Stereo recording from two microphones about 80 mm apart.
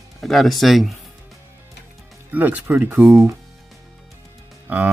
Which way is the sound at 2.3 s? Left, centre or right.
Right.